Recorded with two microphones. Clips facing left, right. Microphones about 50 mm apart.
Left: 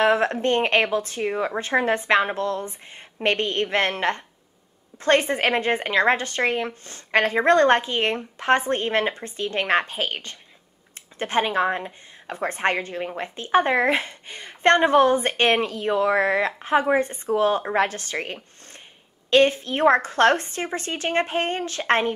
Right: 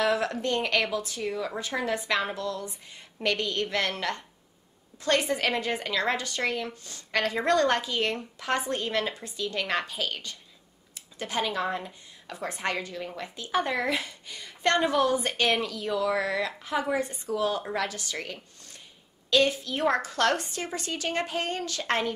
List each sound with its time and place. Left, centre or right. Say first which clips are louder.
0.0 s a woman's voice: left 6 dB; left